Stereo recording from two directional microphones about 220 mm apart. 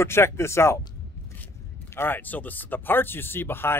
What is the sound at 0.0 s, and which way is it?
Speech, 10° left (ahead or behind).